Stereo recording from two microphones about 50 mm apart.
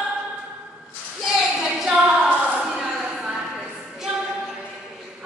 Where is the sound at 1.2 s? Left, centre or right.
Centre.